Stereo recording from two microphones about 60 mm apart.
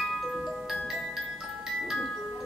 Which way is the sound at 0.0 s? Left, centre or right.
Centre.